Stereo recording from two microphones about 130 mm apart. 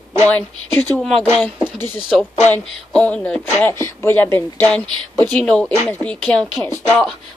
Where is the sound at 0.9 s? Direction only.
5° left (ahead or behind).